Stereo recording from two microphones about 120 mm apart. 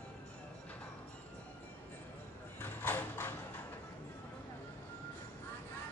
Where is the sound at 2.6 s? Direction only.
20° left (ahead or behind).